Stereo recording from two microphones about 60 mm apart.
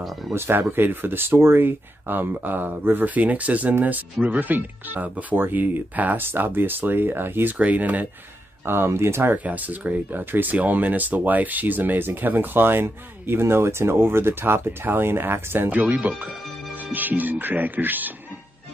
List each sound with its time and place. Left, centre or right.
0.0 s speech: centre
0.3 s speech: right
7.5 s speech: right
8.6 s speech: right
9.4 s speech: right
15.7 s speech: right